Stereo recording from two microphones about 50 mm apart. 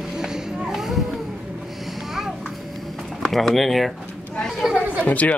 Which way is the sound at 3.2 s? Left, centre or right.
Centre.